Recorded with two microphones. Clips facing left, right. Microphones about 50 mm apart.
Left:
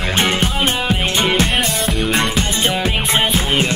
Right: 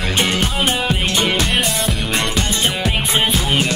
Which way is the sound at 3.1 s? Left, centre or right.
Centre.